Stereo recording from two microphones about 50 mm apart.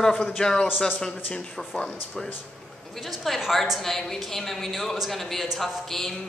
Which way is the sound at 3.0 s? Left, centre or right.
Centre.